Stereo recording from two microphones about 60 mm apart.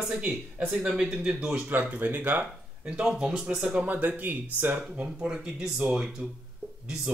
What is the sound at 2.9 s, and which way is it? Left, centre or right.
Speech, centre.